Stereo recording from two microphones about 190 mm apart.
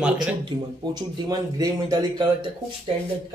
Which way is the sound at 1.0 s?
20° right (ahead or behind).